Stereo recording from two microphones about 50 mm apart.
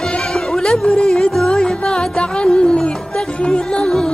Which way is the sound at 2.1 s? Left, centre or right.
Left.